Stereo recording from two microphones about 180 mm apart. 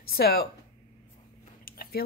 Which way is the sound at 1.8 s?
55° left (ahead or behind).